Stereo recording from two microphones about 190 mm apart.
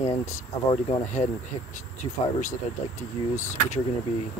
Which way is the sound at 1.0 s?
40° left (ahead or behind).